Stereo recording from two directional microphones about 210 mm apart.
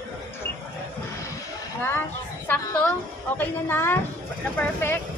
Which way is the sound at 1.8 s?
10° left (ahead or behind).